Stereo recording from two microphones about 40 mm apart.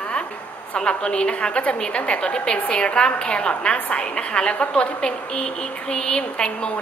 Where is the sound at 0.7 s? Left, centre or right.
Left.